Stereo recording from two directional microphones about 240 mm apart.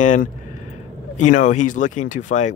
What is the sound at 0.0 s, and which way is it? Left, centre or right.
Speech, left.